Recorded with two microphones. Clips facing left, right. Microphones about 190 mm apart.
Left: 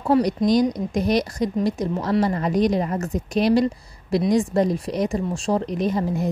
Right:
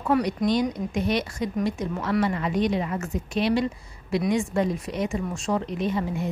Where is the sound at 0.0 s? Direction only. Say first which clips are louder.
Left 4 dB; 35° left (ahead or behind).